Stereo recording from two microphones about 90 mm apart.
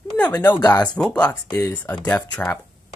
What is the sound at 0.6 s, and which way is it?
Speech, 45° left (ahead or behind).